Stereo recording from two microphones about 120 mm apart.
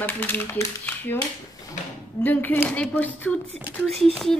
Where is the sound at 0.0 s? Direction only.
15° left (ahead or behind).